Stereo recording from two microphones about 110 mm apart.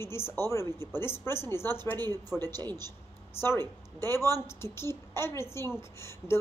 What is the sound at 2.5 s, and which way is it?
Speech, 35° right (ahead or behind).